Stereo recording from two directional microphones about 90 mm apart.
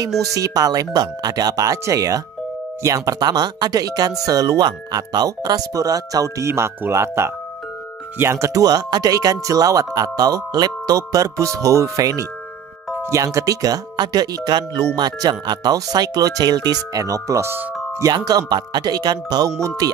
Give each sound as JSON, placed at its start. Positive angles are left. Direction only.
{"t": 0.2, "sound": "speech", "side_deg": -40}
{"t": 8.6, "sound": "speech", "side_deg": -45}
{"t": 18.0, "sound": "speech", "side_deg": -45}